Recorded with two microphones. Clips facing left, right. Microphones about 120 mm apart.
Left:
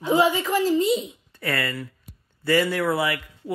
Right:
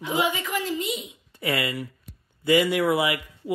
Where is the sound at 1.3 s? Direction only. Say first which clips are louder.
Right 1 dB; 20° right (ahead or behind).